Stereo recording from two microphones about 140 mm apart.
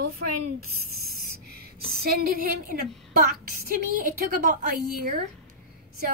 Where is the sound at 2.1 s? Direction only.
90° right.